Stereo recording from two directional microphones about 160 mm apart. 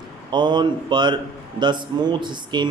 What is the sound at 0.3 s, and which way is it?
A man's voice, 30° right (ahead or behind).